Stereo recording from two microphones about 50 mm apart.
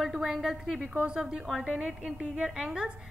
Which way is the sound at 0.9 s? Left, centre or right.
Centre.